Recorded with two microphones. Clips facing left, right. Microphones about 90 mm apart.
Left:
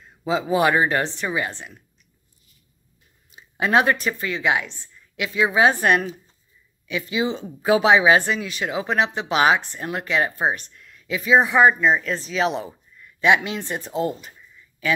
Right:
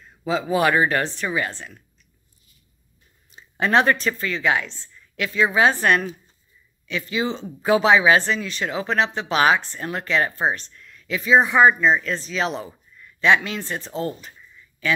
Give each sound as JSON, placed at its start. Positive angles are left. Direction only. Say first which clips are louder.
{"t": 0.0, "sound": "speech", "louder": "left 1 dB", "side_deg": 20}
{"t": 3.3, "sound": "a woman's voice", "louder": "even", "side_deg": 10}